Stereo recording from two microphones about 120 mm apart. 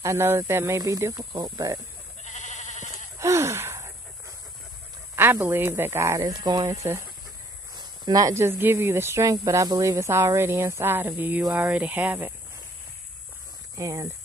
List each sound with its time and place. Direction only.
0.0 s speech: 20° right (ahead or behind)
2.2 s sheep: 85° left
3.2 s gasp: 25° right (ahead or behind)
5.1 s speech: 20° right (ahead or behind)
7.7 s speech: 35° right (ahead or behind); by 12.4 s 15° right (ahead or behind)
13.7 s speech: 25° right (ahead or behind)